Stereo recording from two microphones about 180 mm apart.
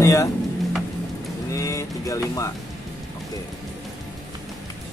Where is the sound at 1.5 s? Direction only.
15° left (ahead or behind).